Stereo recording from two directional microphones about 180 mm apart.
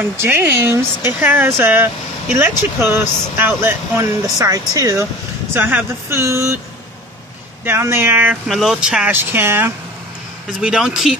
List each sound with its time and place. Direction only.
0.2 s speech: 10° right (ahead or behind)
7.6 s speech: 15° right (ahead or behind)